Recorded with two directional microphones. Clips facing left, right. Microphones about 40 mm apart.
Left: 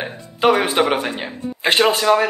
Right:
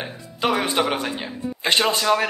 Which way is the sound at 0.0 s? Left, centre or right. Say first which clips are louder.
Left 7 dB; left.